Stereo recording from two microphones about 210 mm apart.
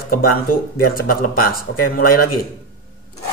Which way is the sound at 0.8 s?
45° left (ahead or behind).